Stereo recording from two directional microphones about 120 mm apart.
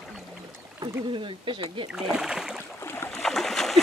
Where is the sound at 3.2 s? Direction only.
5° left (ahead or behind).